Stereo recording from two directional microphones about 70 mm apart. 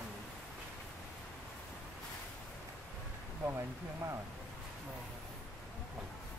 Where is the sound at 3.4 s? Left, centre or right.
Right.